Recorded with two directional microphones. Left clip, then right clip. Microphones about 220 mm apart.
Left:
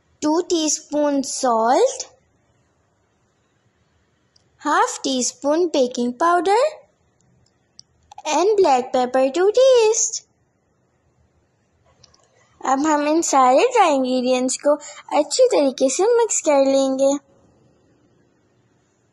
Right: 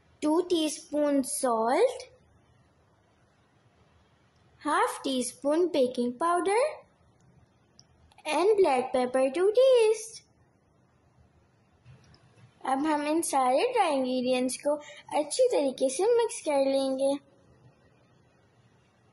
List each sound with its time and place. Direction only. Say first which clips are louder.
0.2 s a woman's voice: left 7 dB; 25° left (ahead or behind)
4.6 s a woman's voice: left 8 dB; 25° left (ahead or behind)
7.7 s a woman's voice: left 17 dB; 30° left (ahead or behind)
12.6 s a woman's voice: left 10 dB; 30° left (ahead or behind)